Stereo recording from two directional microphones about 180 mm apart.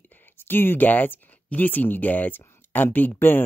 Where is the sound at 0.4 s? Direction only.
10° left (ahead or behind).